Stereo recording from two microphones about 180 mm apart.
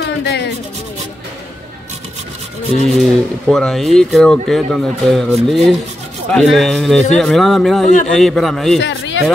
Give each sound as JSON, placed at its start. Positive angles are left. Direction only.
{"t": 0.0, "sound": "rub", "side_deg": 75}
{"t": 2.9, "sound": "speech", "side_deg": 0}
{"t": 8.8, "sound": "speech", "side_deg": 90}